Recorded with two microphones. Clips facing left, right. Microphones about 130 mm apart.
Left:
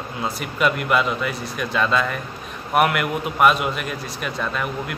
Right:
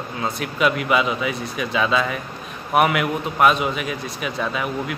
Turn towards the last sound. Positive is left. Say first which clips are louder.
# right 1 dB
turn(degrees=-5)  # may be behind; listen again after turning